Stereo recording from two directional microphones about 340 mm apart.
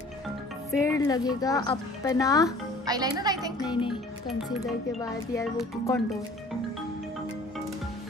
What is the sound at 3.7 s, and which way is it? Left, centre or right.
Speech, centre.